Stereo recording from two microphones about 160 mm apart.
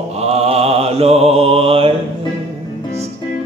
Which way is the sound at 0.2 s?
40° right (ahead or behind).